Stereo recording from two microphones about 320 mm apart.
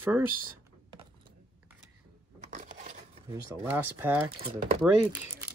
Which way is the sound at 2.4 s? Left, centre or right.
Right.